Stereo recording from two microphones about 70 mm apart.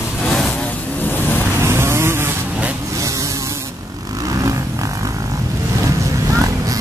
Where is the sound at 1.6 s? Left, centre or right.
Right.